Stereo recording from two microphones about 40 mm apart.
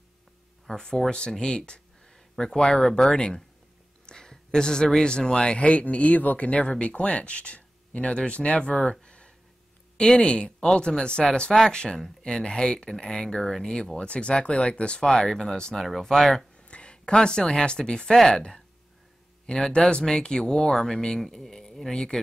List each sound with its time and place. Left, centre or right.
0.7 s speech: centre
2.3 s speech: centre
9.0 s a sound: left
10.1 s speech: left
14.0 s speech: left; by 16.4 s centre
16.5 s speech: left; by 21.9 s centre
21.9 s speech: centre